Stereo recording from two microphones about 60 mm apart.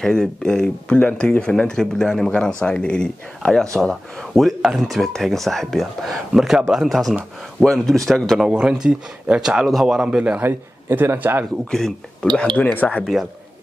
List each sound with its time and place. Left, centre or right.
0.0 s speech: centre
3.9 s speech: centre
8.5 s speech: centre
9.7 s speech: centre
10.4 s a man's voice: right
11.7 s speech: centre
12.6 s speech: left
13.0 s speech: centre